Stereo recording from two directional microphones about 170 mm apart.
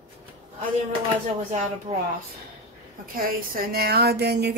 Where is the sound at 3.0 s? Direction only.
55° right (ahead or behind); by 4.5 s 75° right (ahead or behind).